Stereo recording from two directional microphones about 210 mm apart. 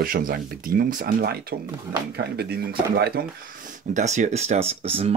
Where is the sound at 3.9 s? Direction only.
35° right (ahead or behind).